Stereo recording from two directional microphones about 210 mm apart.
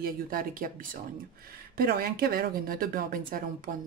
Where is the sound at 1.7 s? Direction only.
45° right (ahead or behind).